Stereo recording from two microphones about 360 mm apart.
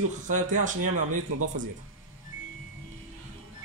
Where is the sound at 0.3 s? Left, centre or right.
Right.